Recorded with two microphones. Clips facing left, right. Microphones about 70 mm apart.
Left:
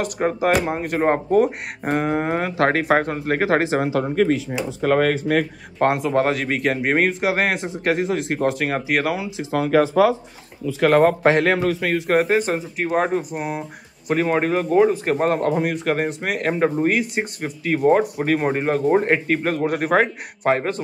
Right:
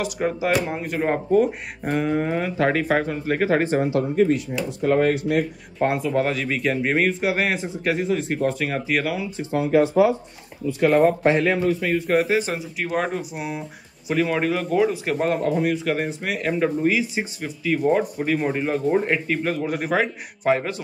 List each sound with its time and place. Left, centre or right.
0.0 s speech: left
2.5 s a man's voice: left
5.8 s a man's voice: left
10.8 s a man's voice: left